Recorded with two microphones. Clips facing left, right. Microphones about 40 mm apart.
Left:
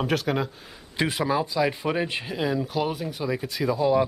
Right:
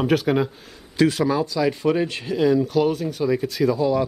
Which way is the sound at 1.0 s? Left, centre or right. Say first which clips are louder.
Right 5 dB; centre.